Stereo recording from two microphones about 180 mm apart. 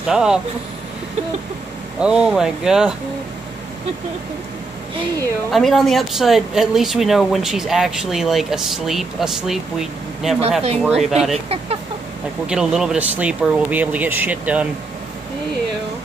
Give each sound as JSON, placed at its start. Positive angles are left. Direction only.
{"t": 0.0, "sound": "speech", "side_deg": -5}
{"t": 2.0, "sound": "speech", "side_deg": -5}
{"t": 5.5, "sound": "speech", "side_deg": 0}
{"t": 11.3, "sound": "speech", "side_deg": -35}
{"t": 12.4, "sound": "speech", "side_deg": -5}